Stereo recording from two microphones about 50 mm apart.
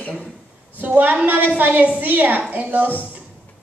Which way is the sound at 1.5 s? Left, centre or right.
Right.